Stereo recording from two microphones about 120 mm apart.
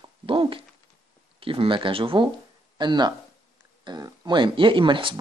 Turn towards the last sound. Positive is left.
turn(degrees=-45)  # may be behind; listen again after turning